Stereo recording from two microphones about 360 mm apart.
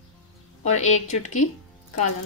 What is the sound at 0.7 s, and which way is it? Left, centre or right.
Speech, centre.